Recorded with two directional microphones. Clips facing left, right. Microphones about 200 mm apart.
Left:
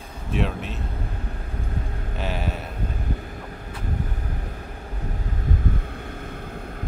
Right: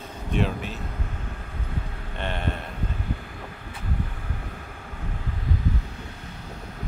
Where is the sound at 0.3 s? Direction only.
Centre (ahead or behind).